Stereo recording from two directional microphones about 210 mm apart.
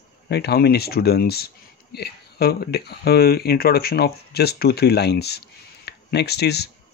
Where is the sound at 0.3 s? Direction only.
50° left (ahead or behind).